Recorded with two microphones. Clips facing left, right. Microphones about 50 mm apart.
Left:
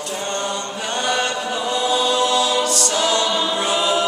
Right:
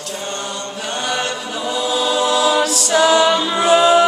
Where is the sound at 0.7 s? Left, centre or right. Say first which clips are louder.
Even; centre.